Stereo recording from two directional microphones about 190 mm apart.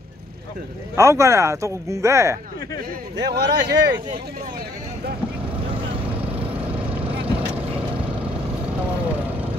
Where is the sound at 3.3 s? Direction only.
60° right (ahead or behind).